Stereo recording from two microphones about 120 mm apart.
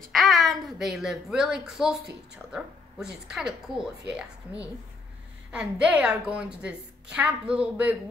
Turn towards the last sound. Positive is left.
turn(degrees=-15)  # may be behind; listen again after turning